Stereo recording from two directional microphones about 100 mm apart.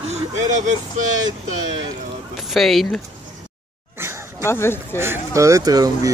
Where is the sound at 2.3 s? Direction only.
Centre (ahead or behind).